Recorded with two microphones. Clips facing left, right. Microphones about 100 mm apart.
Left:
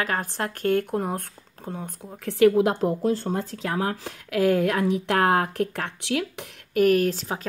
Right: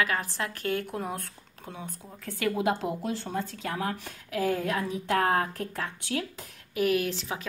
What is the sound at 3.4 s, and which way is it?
Speech, 90° left.